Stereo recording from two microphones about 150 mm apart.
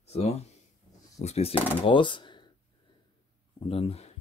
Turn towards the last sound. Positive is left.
turn(degrees=40)  # may be behind; listen again after turning